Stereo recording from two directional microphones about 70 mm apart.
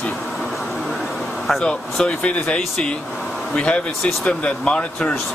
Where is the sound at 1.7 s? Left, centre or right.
Centre.